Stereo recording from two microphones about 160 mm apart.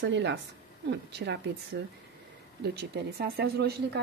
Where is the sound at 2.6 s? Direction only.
85° right.